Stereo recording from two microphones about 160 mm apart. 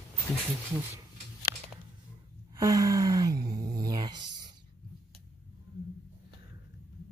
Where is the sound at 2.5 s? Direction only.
20° right (ahead or behind).